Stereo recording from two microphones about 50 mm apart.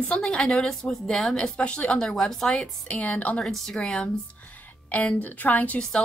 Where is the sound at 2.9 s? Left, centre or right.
Left.